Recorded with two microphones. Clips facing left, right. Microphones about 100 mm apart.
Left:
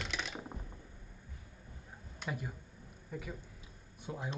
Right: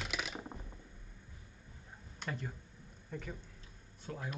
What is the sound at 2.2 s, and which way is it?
A man's voice, 10° left (ahead or behind).